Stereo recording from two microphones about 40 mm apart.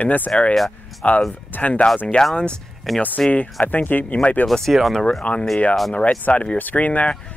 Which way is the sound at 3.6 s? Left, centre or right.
Left.